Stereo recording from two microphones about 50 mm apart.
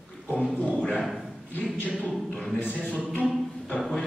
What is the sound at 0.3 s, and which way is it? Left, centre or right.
Speech, left.